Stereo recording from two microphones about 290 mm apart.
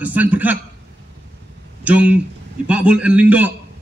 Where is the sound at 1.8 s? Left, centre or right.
Centre.